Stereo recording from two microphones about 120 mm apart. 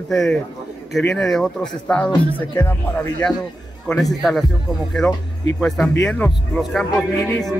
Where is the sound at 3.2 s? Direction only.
10° left (ahead or behind).